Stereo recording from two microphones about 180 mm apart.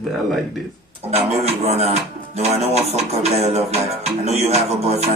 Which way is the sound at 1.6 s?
35° right (ahead or behind).